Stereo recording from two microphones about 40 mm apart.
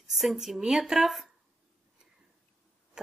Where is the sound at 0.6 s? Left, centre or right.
Centre.